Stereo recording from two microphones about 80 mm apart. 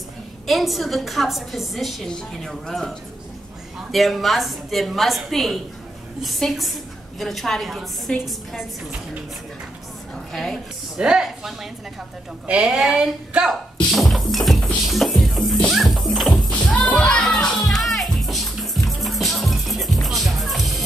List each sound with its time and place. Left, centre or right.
0.5 s a woman's voice: centre
3.9 s a woman's voice: centre
8.1 s a woman's voice: centre
10.3 s a woman's voice: centre
11.0 s speech: centre
13.8 s music: centre
16.5 s music: centre